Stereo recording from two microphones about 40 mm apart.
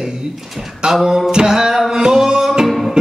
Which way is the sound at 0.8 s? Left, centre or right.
Centre.